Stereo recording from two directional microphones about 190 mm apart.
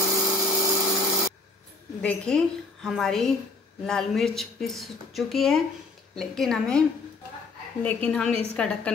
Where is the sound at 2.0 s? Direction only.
5° left (ahead or behind).